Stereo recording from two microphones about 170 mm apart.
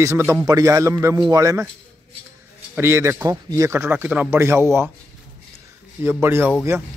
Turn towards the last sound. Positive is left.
turn(degrees=-15)  # may be behind; listen again after turning